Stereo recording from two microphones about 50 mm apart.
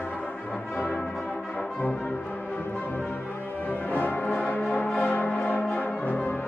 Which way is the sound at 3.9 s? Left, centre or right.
Left.